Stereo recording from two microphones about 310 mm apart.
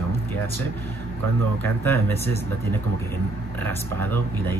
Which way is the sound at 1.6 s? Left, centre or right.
Centre.